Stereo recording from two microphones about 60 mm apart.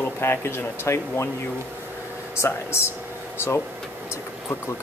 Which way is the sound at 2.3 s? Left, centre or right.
Left.